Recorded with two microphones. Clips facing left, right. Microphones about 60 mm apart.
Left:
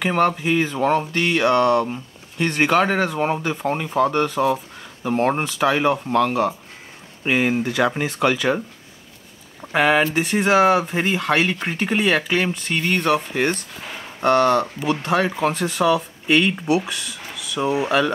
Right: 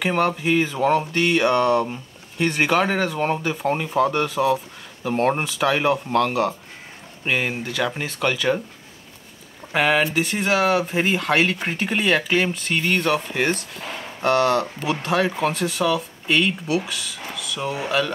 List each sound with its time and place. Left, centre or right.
0.0 s speech: centre
9.7 s speech: centre
16.6 s speech: centre